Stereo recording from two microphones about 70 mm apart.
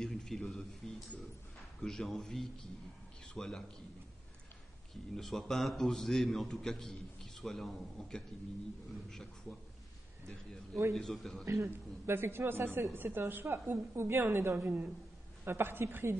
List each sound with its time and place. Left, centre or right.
0.0 s a man's voice: centre
5.1 s a man's voice: centre
10.2 s a man's voice: centre
11.4 s speech: right